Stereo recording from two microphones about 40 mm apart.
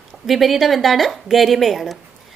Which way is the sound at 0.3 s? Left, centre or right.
Centre.